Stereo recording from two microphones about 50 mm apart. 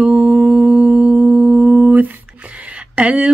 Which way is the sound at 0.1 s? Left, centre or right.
Right.